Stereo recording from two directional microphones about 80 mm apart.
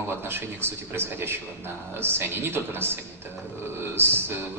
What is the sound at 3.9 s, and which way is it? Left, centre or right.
Speech, right.